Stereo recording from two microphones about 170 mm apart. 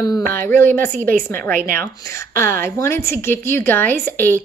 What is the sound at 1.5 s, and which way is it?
Speech, 60° right (ahead or behind).